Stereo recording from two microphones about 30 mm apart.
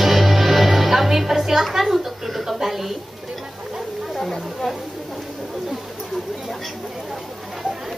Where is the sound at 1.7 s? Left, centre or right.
Centre.